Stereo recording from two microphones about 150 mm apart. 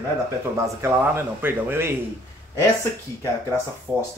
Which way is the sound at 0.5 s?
15° right (ahead or behind).